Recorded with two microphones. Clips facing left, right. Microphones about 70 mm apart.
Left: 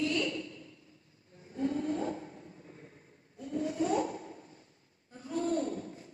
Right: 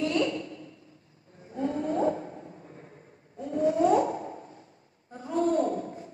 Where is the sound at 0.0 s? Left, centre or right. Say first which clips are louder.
Right 5 dB; right.